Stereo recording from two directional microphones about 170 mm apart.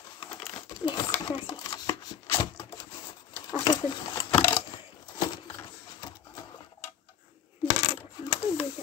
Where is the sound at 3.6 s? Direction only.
25° left (ahead or behind).